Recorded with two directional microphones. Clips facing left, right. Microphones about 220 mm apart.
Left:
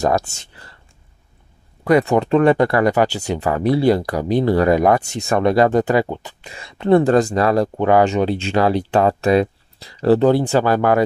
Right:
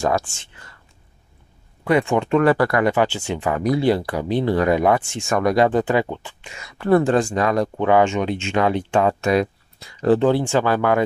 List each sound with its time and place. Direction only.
0.0 s speech: 40° left (ahead or behind)
1.9 s speech: 40° left (ahead or behind)
2.4 s speech: 25° left (ahead or behind)
2.8 s speech: 40° left (ahead or behind)
7.1 s speech: 40° left (ahead or behind)